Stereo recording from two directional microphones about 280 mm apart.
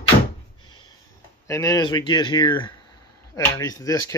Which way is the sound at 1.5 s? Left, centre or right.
Centre.